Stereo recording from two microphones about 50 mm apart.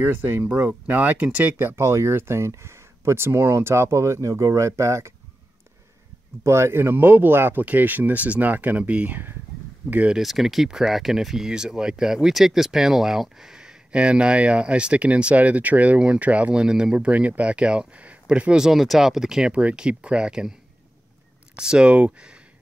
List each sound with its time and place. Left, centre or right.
0.0 s speech: right
0.6 s speech: right
1.8 s speech: right
2.1 s speech: right
6.4 s speech: right
7.6 s speech: right
10.1 s speech: centre
13.9 s speech: right
16.6 s speech: centre
16.9 s speech: right
18.6 s speech: centre
19.5 s speech: right
21.5 s speech: centre